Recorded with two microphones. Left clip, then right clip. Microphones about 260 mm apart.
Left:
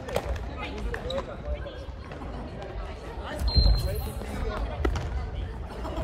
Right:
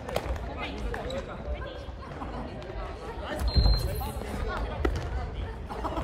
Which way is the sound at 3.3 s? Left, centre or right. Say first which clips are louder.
Left 3 dB; centre.